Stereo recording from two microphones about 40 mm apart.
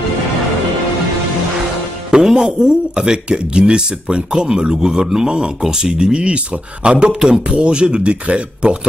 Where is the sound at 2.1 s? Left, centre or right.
Centre.